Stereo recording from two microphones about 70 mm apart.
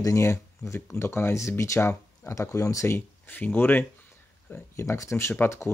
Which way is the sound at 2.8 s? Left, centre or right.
Left.